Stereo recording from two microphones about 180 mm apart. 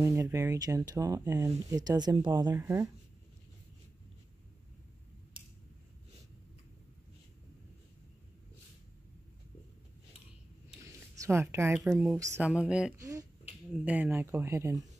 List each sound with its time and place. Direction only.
0.0 s speech: 15° right (ahead or behind)
10.8 s a sound: 15° right (ahead or behind)
11.9 s speech: 15° right (ahead or behind)
13.0 s speech: 20° right (ahead or behind)
13.7 s speech: 10° right (ahead or behind)